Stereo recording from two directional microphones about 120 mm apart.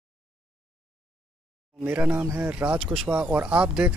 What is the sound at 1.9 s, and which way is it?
Speech, 15° right (ahead or behind).